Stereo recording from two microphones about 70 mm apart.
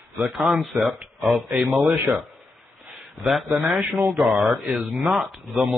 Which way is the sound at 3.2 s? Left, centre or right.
Centre.